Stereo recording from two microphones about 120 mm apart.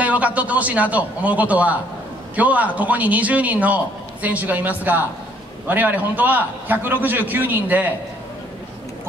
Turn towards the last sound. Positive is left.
turn(degrees=-15)  # may be behind; listen again after turning